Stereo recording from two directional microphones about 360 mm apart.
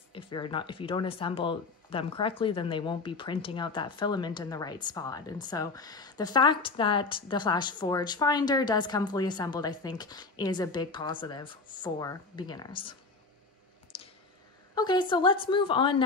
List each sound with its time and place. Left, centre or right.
0.1 s speech: centre
13.9 s clicking: centre
14.8 s speech: centre